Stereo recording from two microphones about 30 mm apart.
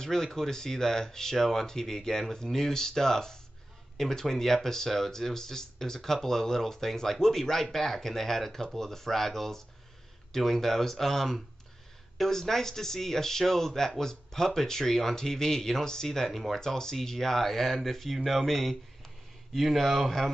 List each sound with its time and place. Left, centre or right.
0.0 s speech: centre
16.3 s speech: centre
16.5 s speech: centre